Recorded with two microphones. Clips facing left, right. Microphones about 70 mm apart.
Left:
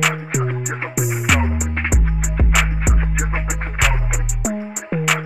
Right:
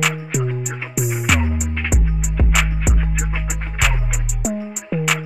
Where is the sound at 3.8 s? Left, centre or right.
Centre.